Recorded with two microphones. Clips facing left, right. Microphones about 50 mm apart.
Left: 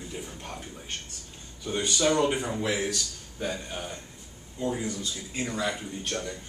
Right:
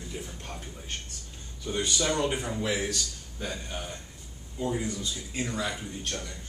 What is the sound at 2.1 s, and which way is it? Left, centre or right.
A man's voice, centre.